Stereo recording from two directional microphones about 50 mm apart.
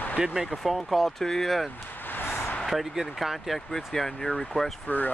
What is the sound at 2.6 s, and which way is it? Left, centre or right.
Speech, centre.